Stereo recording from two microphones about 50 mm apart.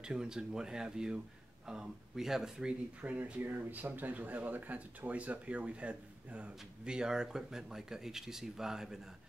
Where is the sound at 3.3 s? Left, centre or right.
Right.